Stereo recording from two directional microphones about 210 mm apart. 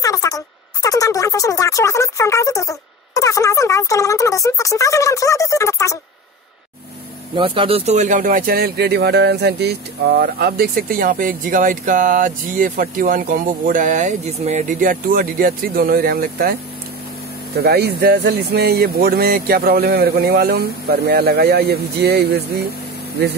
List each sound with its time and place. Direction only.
0.0 s music: 15° left (ahead or behind)
0.8 s speech: 15° left (ahead or behind)
7.3 s a man's voice: 25° right (ahead or behind); by 16.5 s 45° right (ahead or behind)
17.6 s speech: 50° right (ahead or behind)